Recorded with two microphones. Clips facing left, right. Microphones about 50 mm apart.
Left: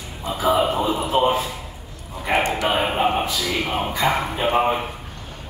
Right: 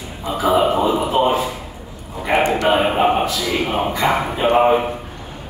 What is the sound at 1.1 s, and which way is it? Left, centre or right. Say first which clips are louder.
Speech: right 1 dB; centre.